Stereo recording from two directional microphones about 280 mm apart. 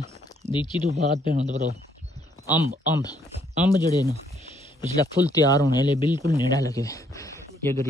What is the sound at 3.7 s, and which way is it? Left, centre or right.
Speech, centre.